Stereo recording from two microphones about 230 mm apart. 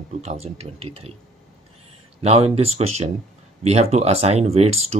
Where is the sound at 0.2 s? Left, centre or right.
Right.